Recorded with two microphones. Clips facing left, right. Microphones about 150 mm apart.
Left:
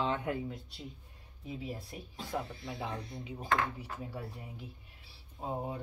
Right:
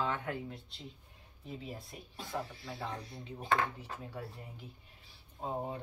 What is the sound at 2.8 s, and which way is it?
Speech, 15° left (ahead or behind).